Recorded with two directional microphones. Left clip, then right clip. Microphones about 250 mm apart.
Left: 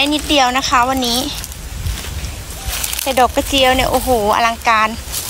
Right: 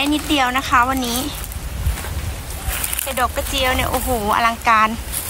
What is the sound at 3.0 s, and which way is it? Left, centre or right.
Speech, centre.